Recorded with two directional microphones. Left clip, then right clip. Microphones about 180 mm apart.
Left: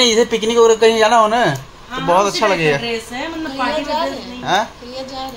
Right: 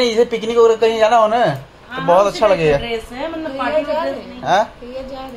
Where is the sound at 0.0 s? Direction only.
25° left (ahead or behind).